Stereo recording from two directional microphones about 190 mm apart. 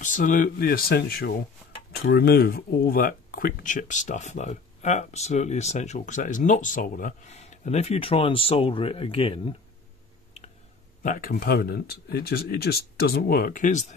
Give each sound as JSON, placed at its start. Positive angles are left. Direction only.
{"t": 0.0, "sound": "speech", "side_deg": 45}
{"t": 11.0, "sound": "speech", "side_deg": 45}